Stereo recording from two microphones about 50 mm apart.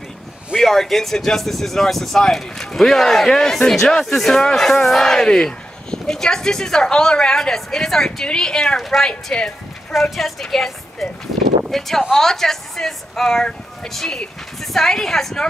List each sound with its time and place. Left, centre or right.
0.6 s speech: centre
8.7 s a woman's voice: centre
9.3 s a sound: centre
9.9 s a woman's voice: centre